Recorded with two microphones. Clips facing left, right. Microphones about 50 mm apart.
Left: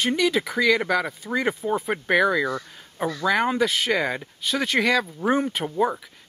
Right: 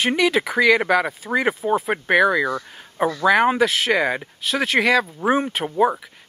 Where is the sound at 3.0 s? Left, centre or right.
Right.